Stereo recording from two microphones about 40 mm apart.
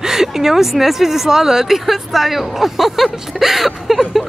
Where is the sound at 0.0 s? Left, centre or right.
Centre.